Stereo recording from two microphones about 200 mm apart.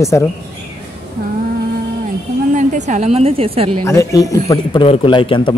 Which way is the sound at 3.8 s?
15° left (ahead or behind).